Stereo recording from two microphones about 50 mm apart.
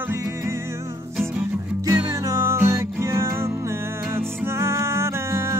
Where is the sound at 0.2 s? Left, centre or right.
Right.